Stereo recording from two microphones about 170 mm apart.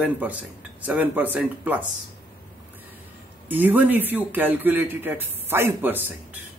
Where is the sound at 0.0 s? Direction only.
10° right (ahead or behind).